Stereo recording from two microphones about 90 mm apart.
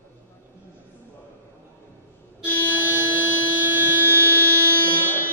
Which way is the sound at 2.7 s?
20° right (ahead or behind).